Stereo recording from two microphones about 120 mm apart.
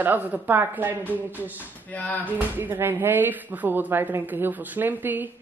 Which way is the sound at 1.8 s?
15° left (ahead or behind).